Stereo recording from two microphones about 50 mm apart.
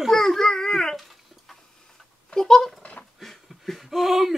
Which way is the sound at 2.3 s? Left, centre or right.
Centre.